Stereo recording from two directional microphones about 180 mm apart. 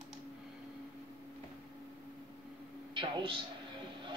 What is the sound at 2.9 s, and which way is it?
Speech, 30° right (ahead or behind).